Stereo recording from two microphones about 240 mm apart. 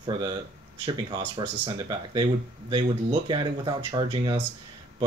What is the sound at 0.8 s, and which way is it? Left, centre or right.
Speech, centre.